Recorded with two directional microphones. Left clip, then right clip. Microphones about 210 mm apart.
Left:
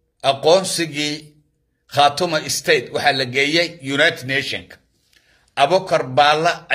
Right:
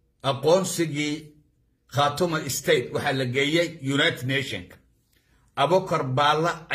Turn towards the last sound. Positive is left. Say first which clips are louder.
# left 7 dB
turn(degrees=-15)  # may be behind; listen again after turning